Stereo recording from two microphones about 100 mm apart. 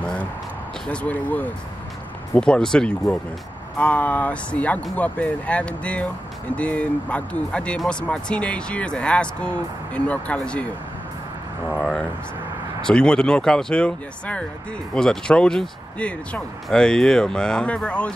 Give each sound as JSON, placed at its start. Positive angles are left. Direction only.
{"t": 0.0, "sound": "a sound", "side_deg": 10}
{"t": 0.8, "sound": "speech", "side_deg": 15}
{"t": 11.7, "sound": "speech", "side_deg": 5}